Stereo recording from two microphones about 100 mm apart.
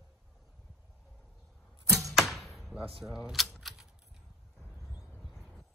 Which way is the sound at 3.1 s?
5° right (ahead or behind).